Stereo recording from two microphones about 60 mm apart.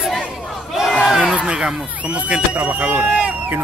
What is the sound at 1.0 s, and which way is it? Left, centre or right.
Speech, centre.